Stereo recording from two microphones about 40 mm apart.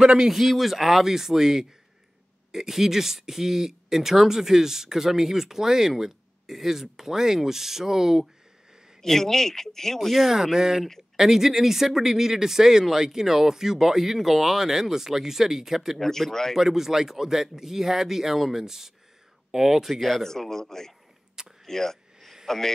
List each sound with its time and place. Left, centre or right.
0.0 s a man's voice: right
0.3 s speech: centre
9.0 s speech: centre
9.9 s speech: centre
16.0 s speech: centre
16.5 s speech: centre
20.2 s speech: centre
21.6 s a sound: centre